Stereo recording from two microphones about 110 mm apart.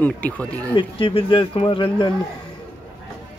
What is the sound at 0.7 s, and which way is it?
Speech, 50° left (ahead or behind).